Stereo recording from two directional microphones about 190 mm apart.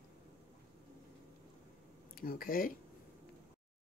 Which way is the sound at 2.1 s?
50° left (ahead or behind).